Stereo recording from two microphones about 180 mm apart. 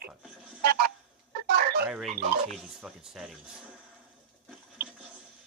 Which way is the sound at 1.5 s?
60° right (ahead or behind).